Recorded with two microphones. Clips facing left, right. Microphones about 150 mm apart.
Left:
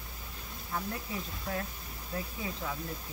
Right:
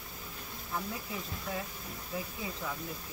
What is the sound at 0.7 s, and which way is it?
Speech, centre (ahead or behind).